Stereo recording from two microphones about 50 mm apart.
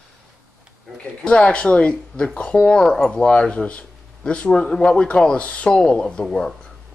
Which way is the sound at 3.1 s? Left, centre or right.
Left.